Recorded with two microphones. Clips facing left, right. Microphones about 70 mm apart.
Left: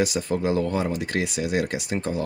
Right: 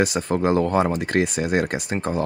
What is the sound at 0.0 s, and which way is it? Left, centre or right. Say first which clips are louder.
Speech: right 3 dB; right.